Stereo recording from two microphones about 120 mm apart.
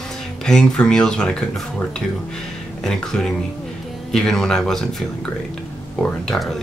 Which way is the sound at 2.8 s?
5° left (ahead or behind).